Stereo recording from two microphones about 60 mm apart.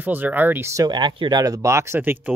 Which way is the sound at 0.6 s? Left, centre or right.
Right.